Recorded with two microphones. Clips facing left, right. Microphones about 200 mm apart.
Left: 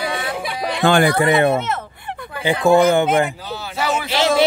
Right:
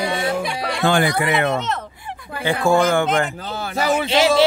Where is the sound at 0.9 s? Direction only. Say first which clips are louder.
Left 3 dB; 60° left (ahead or behind).